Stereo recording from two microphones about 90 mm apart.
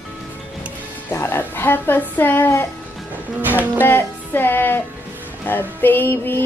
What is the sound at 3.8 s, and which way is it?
Music, 25° left (ahead or behind).